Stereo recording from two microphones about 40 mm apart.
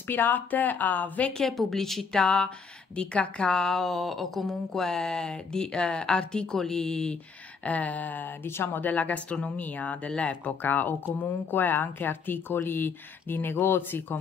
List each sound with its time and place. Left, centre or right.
0.0 s speech: left
1.4 s speech: centre
2.1 s a woman's voice: left
3.8 s speech: centre
7.6 s speech: left
10.6 s a woman's voice: left